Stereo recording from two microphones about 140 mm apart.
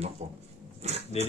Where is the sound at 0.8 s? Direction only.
50° right (ahead or behind).